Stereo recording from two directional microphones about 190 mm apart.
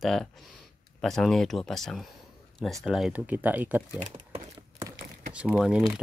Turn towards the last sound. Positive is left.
turn(degrees=0)  # may be behind; listen again after turning